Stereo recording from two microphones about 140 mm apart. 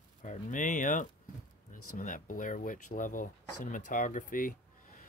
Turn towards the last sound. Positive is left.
turn(degrees=75)  # may be behind; listen again after turning